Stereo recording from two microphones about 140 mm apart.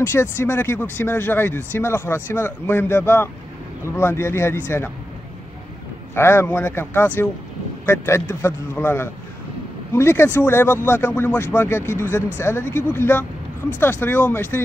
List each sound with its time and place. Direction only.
0.0 s speech: 20° left (ahead or behind)
6.1 s speech: 15° left (ahead or behind)